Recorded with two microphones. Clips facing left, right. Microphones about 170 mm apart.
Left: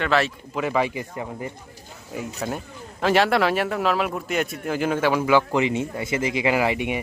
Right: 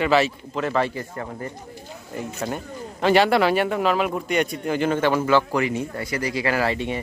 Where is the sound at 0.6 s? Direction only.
10° left (ahead or behind).